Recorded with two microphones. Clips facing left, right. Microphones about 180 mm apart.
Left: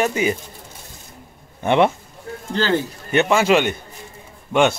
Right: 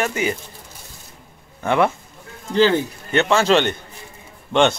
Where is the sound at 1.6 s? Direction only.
20° left (ahead or behind).